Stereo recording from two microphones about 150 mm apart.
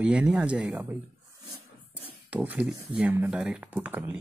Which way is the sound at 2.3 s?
10° right (ahead or behind).